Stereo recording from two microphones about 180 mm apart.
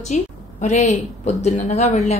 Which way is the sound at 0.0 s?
40° left (ahead or behind).